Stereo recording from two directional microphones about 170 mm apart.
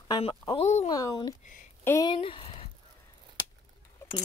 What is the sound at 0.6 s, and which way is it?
Speech, 40° left (ahead or behind).